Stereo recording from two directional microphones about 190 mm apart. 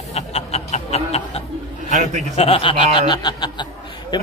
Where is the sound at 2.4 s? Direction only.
30° left (ahead or behind).